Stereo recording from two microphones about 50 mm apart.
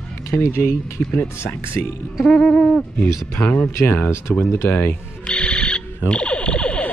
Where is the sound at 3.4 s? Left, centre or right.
Left.